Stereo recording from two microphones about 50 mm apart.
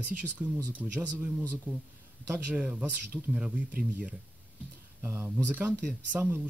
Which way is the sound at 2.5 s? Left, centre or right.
Centre.